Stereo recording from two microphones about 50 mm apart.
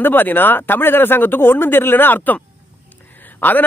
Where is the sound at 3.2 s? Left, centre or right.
Left.